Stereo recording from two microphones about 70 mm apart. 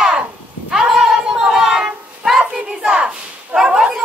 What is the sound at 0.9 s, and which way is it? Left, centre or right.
Child singing, centre.